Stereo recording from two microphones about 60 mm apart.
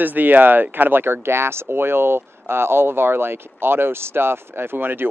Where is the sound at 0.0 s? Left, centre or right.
Right.